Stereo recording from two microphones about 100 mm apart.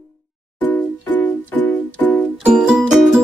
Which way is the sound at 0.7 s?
15° left (ahead or behind).